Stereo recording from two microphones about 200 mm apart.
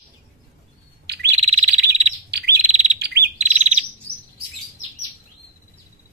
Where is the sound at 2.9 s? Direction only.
55° right (ahead or behind).